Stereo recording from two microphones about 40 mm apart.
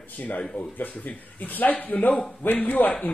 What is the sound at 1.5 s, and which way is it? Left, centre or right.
Speech, left.